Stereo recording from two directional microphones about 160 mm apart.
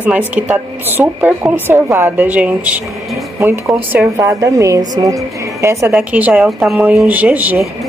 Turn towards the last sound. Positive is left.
turn(degrees=-10)  # may be behind; listen again after turning